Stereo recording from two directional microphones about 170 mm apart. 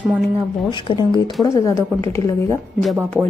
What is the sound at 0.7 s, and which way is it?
A woman's voice, 30° left (ahead or behind).